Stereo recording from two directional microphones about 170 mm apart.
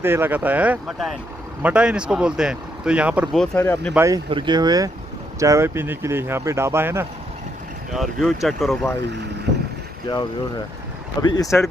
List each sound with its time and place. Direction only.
0.0 s speech: 15° right (ahead or behind)
3.3 s speech: 10° left (ahead or behind)
3.9 s speech: 15° right (ahead or behind)
7.9 s speech: centre (ahead or behind)
11.2 s speech: 20° left (ahead or behind)